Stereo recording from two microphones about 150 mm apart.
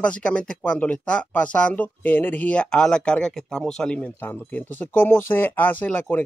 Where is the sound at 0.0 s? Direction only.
10° left (ahead or behind).